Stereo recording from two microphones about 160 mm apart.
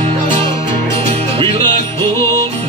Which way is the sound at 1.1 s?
35° right (ahead or behind).